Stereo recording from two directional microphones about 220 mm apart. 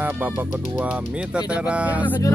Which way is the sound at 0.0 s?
5° right (ahead or behind).